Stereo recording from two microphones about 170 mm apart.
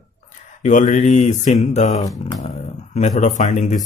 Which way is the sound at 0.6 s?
45° left (ahead or behind).